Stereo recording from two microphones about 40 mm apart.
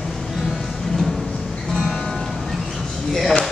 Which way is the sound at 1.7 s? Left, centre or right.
Centre.